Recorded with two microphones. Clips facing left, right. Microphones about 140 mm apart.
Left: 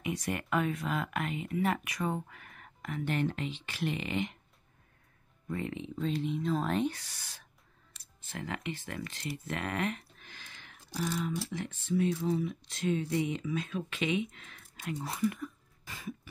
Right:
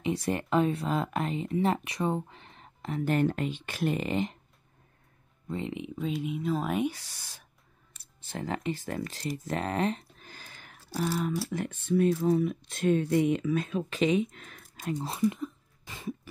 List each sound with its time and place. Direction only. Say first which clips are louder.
0.0 s speech: right 5 dB; 30° right (ahead or behind)
3.0 s speech: right 6 dB; 45° right (ahead or behind)
5.5 s speech: right 2 dB; 20° right (ahead or behind)
8.3 s speech: right 6 dB; 35° right (ahead or behind)
11.5 s speech: right 5 dB; 55° right (ahead or behind)
13.7 s speech: right 6 dB; 35° right (ahead or behind)
15.0 s a sound: right 4 dB; 25° right (ahead or behind)